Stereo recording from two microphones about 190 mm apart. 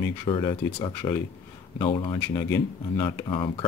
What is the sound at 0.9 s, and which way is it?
Speech, 15° left (ahead or behind).